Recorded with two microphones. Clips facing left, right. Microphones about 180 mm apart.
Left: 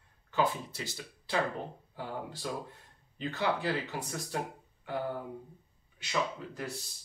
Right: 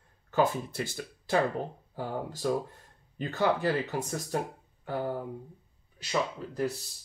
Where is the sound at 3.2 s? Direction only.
45° right (ahead or behind).